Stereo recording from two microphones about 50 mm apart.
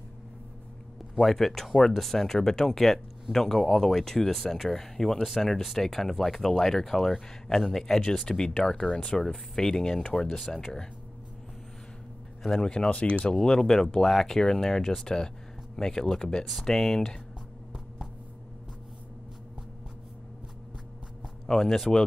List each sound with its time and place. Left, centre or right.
1.2 s speech: centre
10.4 s speech: centre
12.4 s speech: centre
12.7 s speech: left
13.4 s speech: centre
21.5 s speech: centre